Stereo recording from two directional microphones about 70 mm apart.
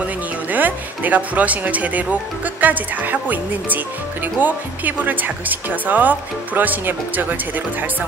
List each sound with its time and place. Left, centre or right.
0.0 s speech: right